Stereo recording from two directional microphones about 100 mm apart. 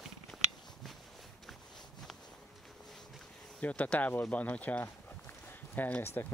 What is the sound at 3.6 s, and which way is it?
Speech, 15° left (ahead or behind).